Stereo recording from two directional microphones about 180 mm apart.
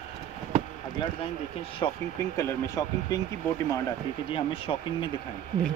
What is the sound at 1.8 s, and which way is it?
Speech, 20° left (ahead or behind).